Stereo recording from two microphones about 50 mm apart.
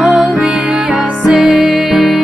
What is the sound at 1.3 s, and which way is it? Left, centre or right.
Music, centre.